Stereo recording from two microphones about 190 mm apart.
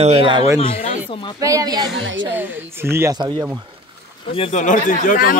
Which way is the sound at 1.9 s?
75° right (ahead or behind).